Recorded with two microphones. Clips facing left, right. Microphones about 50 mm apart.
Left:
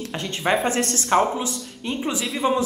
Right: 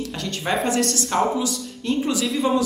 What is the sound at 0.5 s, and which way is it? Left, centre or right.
Speech, left.